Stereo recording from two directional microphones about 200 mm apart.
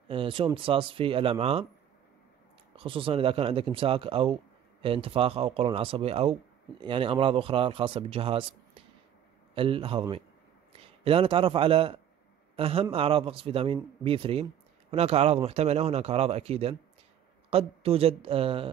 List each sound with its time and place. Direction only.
0.1 s a man's voice: 25° right (ahead or behind)
2.7 s a man's voice: 25° right (ahead or behind)